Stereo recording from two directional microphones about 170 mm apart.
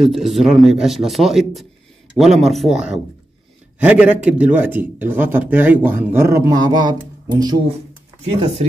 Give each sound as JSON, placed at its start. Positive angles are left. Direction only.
{"t": 0.0, "sound": "a man's voice", "side_deg": 0}
{"t": 8.2, "sound": "speech", "side_deg": -40}